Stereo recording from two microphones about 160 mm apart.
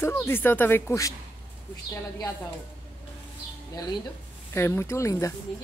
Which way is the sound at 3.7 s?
25° left (ahead or behind).